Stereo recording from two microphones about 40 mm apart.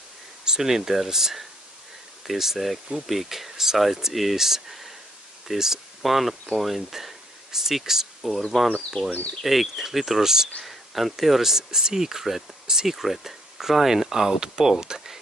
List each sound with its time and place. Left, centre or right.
0.5 s speech: centre
8.5 s speech: centre
9.1 s speech: left
9.4 s speech: centre